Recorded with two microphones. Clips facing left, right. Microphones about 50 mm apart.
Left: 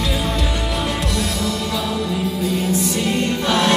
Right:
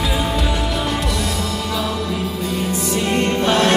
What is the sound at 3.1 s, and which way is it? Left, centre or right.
Music, right.